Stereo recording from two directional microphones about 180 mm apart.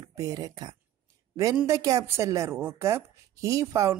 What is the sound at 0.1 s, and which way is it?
A woman's voice, 20° right (ahead or behind).